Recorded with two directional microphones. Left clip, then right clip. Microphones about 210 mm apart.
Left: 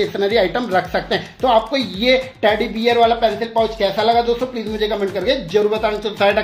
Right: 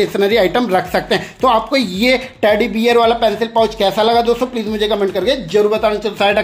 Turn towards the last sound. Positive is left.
turn(degrees=-15)  # may be behind; listen again after turning